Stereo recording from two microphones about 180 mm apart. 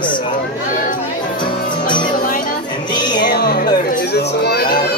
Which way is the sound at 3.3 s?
60° left (ahead or behind).